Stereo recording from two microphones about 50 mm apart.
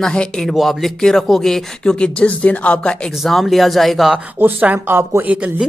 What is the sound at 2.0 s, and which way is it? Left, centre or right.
Speech, left.